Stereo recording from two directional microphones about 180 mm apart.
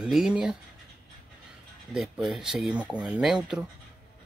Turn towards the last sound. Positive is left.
turn(degrees=0)  # may be behind; listen again after turning